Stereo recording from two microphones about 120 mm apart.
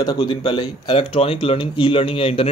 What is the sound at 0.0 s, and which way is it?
Speech, 40° left (ahead or behind).